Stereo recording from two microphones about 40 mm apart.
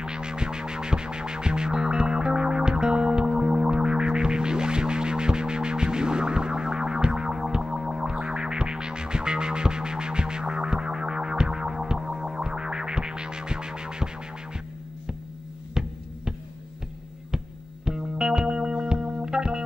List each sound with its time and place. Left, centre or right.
0.0 s music: right
15.8 s music: centre
17.8 s music: centre